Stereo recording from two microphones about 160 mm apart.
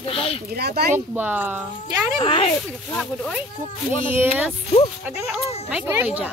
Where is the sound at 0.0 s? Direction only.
35° left (ahead or behind).